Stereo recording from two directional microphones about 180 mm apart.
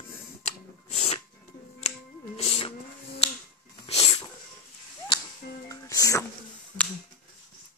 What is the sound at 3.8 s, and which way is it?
Sneeze, 35° left (ahead or behind).